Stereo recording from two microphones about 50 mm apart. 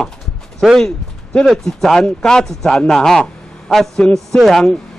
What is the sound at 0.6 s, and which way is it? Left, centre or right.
Speech, centre.